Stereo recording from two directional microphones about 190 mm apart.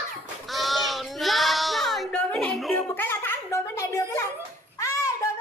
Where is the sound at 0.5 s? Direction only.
Centre (ahead or behind).